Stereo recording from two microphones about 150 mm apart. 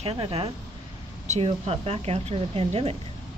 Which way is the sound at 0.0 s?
40° right (ahead or behind).